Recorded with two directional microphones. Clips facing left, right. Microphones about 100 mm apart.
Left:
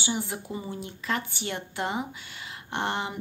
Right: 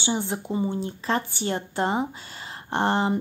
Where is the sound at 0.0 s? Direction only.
30° right (ahead or behind).